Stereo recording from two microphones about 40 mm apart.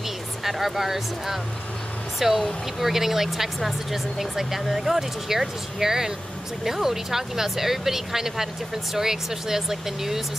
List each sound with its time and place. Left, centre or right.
0.4 s speech: centre